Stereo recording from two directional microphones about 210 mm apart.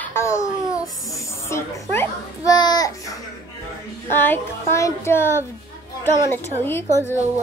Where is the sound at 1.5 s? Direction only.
15° left (ahead or behind).